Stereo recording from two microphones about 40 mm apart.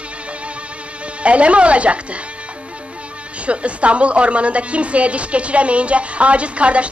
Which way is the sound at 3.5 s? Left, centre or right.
Right.